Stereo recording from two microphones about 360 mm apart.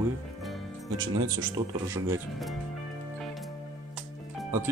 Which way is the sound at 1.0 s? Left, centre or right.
Right.